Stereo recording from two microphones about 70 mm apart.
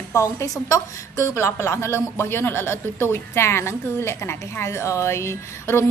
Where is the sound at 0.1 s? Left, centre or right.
Left.